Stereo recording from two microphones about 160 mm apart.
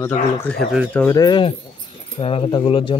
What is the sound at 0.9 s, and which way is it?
Speech, 20° left (ahead or behind).